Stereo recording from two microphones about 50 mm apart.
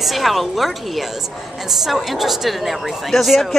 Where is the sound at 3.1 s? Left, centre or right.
Centre.